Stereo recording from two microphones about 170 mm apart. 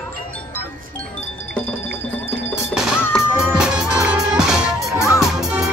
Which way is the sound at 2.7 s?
5° right (ahead or behind).